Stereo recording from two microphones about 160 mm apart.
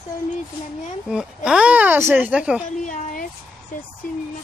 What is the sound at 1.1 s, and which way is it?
Speech, 5° right (ahead or behind).